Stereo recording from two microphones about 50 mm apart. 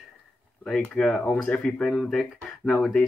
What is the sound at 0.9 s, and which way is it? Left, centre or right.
Speech, centre.